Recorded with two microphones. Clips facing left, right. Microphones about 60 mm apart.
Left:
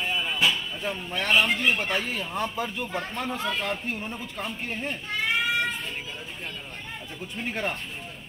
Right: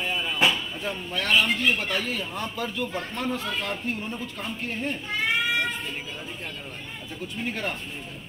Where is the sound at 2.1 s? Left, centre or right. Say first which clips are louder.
Even; centre.